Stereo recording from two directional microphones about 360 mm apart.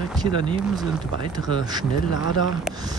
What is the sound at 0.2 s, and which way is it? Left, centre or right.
Speech, centre.